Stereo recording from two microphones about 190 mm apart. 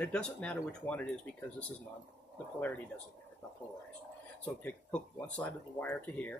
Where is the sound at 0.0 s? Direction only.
5° left (ahead or behind).